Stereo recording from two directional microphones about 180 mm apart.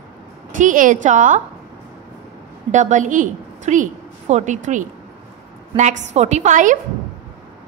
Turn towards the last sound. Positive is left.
turn(degrees=-45)  # may be behind; listen again after turning